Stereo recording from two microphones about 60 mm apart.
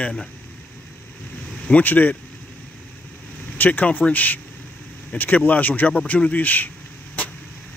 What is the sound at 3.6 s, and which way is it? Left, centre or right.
Speech, left.